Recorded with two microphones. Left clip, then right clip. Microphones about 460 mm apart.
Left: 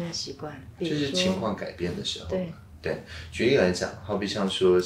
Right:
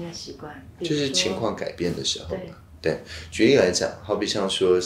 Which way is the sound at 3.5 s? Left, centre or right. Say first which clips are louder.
Right 4 dB; right.